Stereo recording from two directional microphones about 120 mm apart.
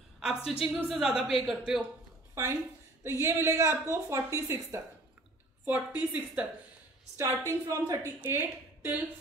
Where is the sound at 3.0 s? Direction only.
20° right (ahead or behind).